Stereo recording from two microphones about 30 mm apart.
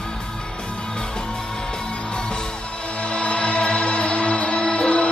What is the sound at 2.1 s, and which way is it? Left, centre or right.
Music, left.